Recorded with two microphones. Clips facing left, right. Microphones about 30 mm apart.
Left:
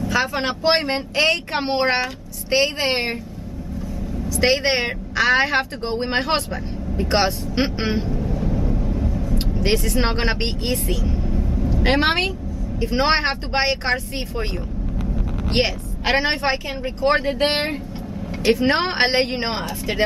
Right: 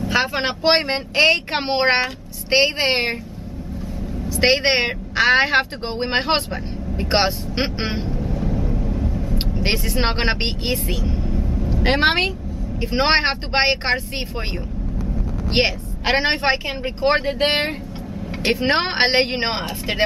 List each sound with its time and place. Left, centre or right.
0.1 s speech: right
1.5 s speech: right
4.3 s a woman's voice: right; by 9.2 s centre
9.3 s speech: right
11.3 s vehicle: centre
12.0 s speech: centre
15.6 s a woman's voice: right
17.2 s speech: centre
18.4 s speech: right